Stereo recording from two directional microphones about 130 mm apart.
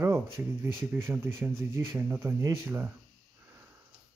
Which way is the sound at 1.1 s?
15° right (ahead or behind).